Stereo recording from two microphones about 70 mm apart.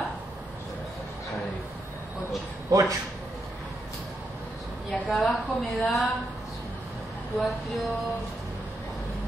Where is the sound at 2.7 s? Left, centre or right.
Right.